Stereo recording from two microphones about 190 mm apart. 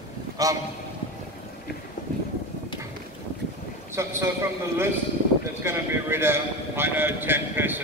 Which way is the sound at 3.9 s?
15° right (ahead or behind).